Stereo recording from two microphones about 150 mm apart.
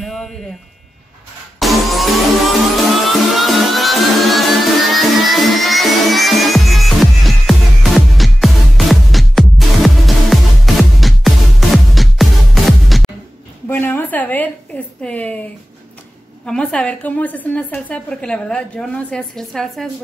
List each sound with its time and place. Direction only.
0.0 s music: 5° left (ahead or behind)
1.6 s music: centre (ahead or behind)
13.7 s a sound: 15° left (ahead or behind)
16.4 s a woman's voice: 5° left (ahead or behind)